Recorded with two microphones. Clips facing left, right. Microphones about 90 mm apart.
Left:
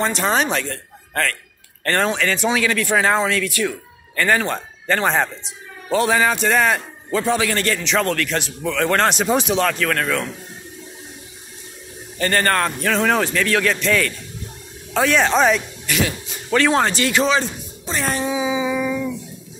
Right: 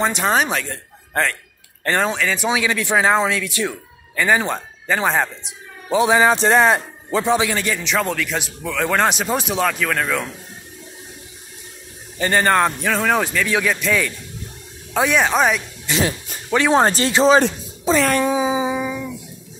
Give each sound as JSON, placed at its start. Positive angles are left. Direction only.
{"t": 0.0, "sound": "speech", "side_deg": -5}
{"t": 1.9, "sound": "speech", "side_deg": -10}
{"t": 4.1, "sound": "speech", "side_deg": -10}
{"t": 6.3, "sound": "speech", "side_deg": -30}
{"t": 12.2, "sound": "speech", "side_deg": -10}
{"t": 15.9, "sound": "cat", "side_deg": -30}
{"t": 16.5, "sound": "speech", "side_deg": -15}
{"t": 16.8, "sound": "cat", "side_deg": -35}
{"t": 18.0, "sound": "cat", "side_deg": -55}
{"t": 18.8, "sound": "music", "side_deg": -15}